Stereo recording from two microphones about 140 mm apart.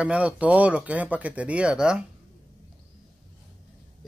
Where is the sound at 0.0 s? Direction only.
10° right (ahead or behind).